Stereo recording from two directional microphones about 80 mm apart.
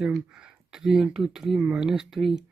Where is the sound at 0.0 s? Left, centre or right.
Centre.